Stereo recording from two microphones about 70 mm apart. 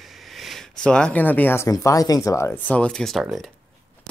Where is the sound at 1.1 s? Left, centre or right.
Left.